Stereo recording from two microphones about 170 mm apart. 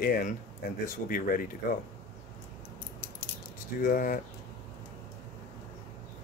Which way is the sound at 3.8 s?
55° left (ahead or behind).